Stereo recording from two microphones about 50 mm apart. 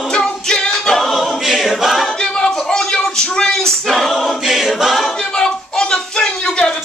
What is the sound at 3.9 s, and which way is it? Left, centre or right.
Choir, centre.